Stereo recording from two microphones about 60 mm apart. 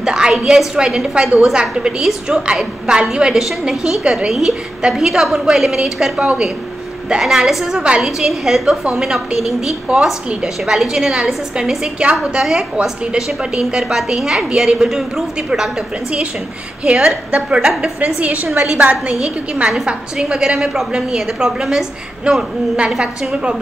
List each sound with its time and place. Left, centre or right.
0.0 s a woman's voice: centre
16.8 s a woman's voice: centre
18.0 s a woman's voice: right